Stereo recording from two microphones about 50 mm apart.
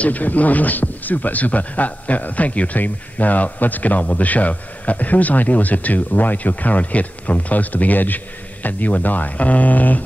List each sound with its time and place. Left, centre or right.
0.0 s speech: left